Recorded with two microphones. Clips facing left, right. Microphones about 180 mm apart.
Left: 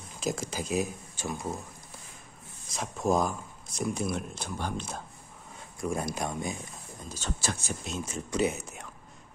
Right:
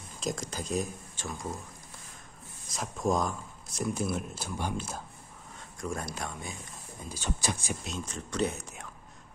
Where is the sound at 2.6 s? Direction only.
Centre (ahead or behind).